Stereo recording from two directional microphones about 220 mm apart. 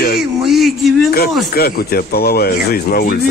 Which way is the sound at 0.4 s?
Centre (ahead or behind).